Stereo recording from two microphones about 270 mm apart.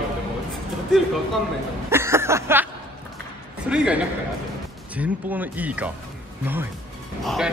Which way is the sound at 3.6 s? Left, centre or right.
Centre.